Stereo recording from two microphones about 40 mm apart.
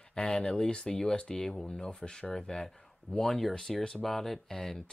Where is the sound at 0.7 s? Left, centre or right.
Centre.